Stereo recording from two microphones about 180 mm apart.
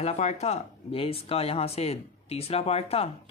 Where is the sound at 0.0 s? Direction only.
35° left (ahead or behind).